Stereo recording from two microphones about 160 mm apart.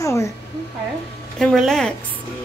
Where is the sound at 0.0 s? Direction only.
20° left (ahead or behind).